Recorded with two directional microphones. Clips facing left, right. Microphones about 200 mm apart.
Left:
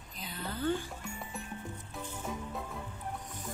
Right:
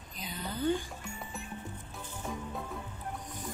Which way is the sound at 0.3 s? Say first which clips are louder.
Right 2 dB; 20° right (ahead or behind).